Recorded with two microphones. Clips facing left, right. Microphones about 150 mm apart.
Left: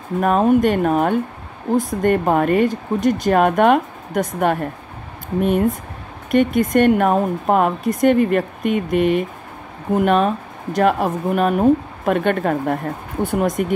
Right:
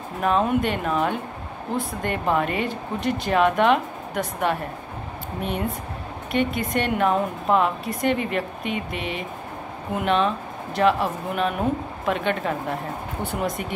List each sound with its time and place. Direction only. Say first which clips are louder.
0.2 s speech: left 6 dB; 45° left (ahead or behind)
6.3 s speech: left 8 dB; 45° left (ahead or behind)